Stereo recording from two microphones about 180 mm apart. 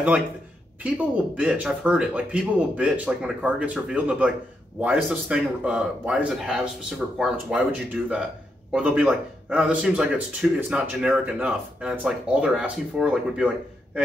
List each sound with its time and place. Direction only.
0.8 s a man's voice: 5° right (ahead or behind)